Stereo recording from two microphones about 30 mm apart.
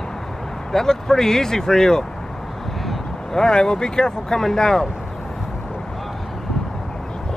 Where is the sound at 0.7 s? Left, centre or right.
Centre.